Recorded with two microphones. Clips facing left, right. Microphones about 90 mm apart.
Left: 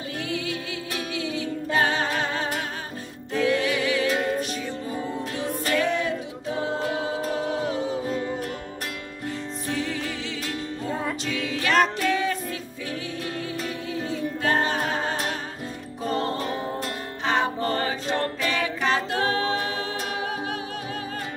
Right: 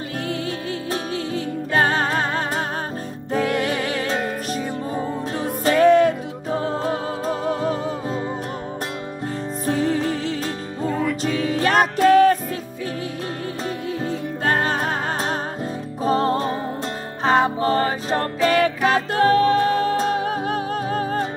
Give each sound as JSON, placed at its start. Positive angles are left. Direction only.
{"t": 1.1, "sound": "music", "side_deg": -40}
{"t": 9.7, "sound": "music", "side_deg": -40}
{"t": 11.2, "sound": "music", "side_deg": -40}
{"t": 14.0, "sound": "music", "side_deg": -40}
{"t": 18.6, "sound": "music", "side_deg": -45}